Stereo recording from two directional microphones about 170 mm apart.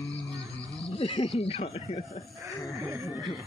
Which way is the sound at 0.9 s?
35° left (ahead or behind).